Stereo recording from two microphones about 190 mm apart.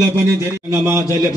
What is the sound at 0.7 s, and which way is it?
Speech, 15° right (ahead or behind).